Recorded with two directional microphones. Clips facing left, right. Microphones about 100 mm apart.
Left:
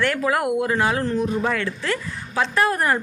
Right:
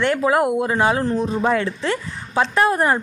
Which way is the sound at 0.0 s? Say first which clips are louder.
Right 4 dB; 25° right (ahead or behind).